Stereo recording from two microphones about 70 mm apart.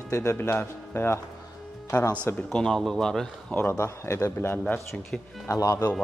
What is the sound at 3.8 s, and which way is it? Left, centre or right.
Speech, left.